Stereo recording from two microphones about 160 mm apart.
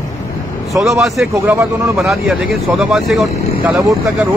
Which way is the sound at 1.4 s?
20° right (ahead or behind).